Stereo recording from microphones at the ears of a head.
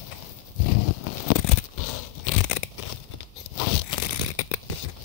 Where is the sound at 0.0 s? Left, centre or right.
Left.